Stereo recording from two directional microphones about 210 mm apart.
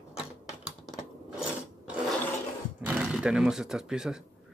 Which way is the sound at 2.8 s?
5° right (ahead or behind).